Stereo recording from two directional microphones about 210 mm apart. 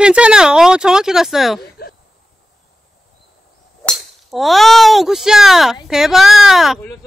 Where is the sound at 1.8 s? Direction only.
50° left (ahead or behind).